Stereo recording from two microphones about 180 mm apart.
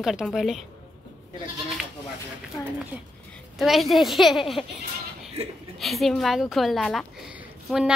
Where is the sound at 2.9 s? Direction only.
10° right (ahead or behind).